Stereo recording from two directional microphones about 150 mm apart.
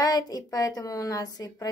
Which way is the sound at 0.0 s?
25° left (ahead or behind).